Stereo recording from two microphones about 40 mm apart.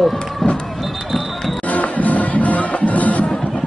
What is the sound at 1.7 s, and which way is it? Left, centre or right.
Music, left.